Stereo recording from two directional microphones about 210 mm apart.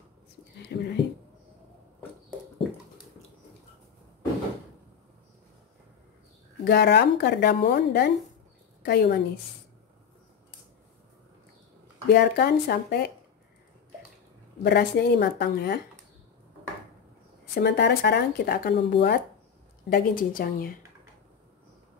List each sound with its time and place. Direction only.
0.7 s speech: 50° left (ahead or behind)
6.6 s speech: 50° left (ahead or behind)
12.1 s speech: 50° left (ahead or behind)
14.6 s speech: 50° left (ahead or behind)
17.6 s speech: 55° left (ahead or behind)